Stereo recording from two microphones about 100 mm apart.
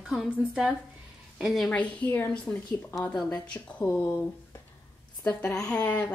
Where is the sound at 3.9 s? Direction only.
25° left (ahead or behind).